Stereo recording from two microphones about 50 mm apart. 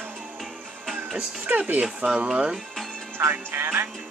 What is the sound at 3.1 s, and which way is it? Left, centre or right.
Speech, right.